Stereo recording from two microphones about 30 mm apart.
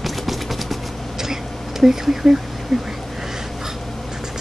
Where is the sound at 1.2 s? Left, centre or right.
Centre.